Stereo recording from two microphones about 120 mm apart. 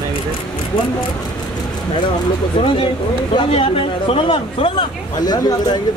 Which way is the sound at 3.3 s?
50° left (ahead or behind).